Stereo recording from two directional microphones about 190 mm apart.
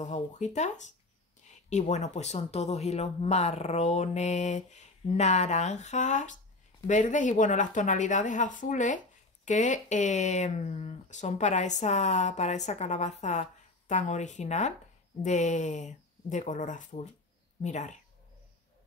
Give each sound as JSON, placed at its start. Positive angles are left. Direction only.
{"t": 0.0, "sound": "speech", "side_deg": 40}